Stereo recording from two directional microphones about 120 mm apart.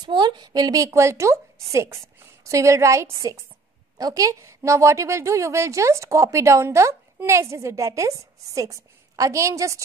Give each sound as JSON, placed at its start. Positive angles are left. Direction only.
{"t": 0.0, "sound": "a woman's voice", "side_deg": -40}